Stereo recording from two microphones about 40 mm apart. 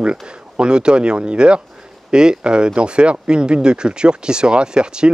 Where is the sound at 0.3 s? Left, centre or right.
Right.